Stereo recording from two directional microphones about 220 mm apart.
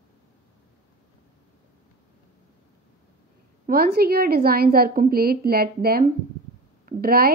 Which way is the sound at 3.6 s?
45° right (ahead or behind).